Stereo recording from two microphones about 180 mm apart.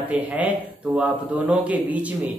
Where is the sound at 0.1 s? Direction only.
5° right (ahead or behind).